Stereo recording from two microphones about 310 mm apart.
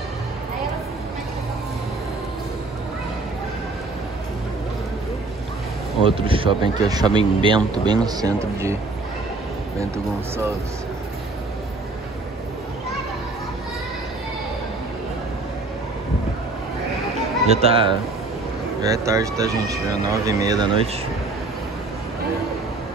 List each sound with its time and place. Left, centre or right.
6.0 s speech: centre
17.5 s speech: centre